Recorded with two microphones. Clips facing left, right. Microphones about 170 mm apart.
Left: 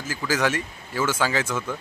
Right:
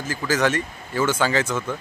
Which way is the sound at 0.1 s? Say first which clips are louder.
Right 2 dB; 10° left (ahead or behind).